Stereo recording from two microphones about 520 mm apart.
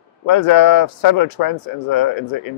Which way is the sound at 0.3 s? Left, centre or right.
Left.